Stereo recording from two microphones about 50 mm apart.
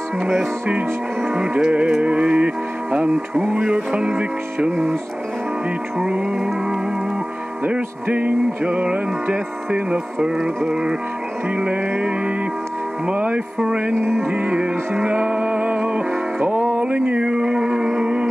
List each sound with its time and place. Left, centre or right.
0.2 s music: centre
6.0 s music: right
7.6 s music: right
10.7 s music: centre
11.5 s music: right
13.9 s music: right
14.3 s music: right
16.8 s a sound: right
17.2 s a sound: centre
17.8 s music: centre